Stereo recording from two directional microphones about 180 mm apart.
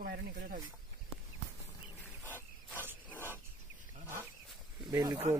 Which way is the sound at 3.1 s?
10° left (ahead or behind).